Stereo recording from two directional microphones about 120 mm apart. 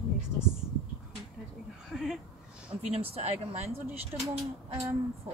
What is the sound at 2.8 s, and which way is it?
Speech, 60° right (ahead or behind).